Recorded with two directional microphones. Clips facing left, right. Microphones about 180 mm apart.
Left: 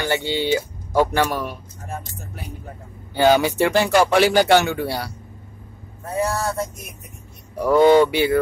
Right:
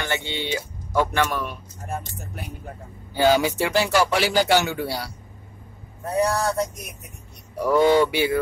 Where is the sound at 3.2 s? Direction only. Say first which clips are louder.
Left 3 dB; 55° left (ahead or behind).